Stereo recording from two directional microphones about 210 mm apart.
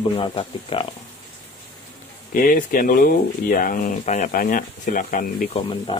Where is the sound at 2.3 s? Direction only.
40° left (ahead or behind).